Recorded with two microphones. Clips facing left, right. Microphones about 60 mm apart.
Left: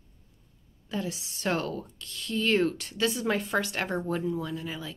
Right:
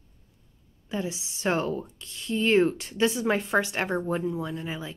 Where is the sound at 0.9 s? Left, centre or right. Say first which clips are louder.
Right 2 dB; centre.